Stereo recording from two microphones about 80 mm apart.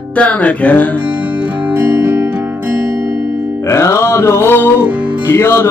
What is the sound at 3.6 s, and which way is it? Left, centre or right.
Music, left.